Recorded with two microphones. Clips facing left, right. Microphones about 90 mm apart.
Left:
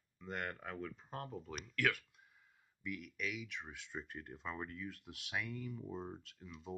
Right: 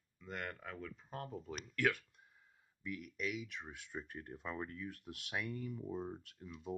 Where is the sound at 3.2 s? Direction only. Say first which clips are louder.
Right 3 dB; 25° right (ahead or behind).